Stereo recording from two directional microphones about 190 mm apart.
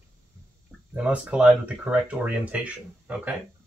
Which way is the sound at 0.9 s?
5° right (ahead or behind).